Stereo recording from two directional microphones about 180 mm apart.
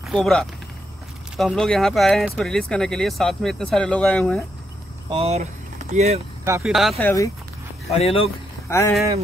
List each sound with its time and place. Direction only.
0.0 s speech: centre (ahead or behind)
5.1 s speech: 35° right (ahead or behind)
6.6 s speech: centre (ahead or behind)
7.0 s speech: 10° left (ahead or behind)
7.9 s speech: 35° left (ahead or behind)
8.6 s speech: 15° left (ahead or behind)